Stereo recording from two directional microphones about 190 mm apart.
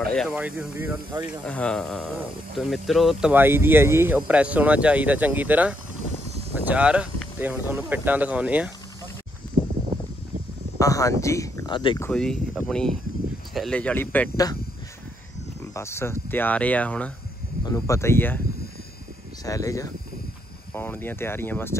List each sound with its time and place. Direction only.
0.0 s speech: 5° left (ahead or behind)
0.4 s speech: 10° right (ahead or behind)
1.4 s speech: 5° left (ahead or behind)
10.8 s cricket: 15° left (ahead or behind)
12.0 s speech: 5° left (ahead or behind)
13.5 s cricket: centre (ahead or behind)
15.7 s cricket: 15° left (ahead or behind)
17.6 s cricket: 15° left (ahead or behind)
19.4 s cricket: 15° left (ahead or behind)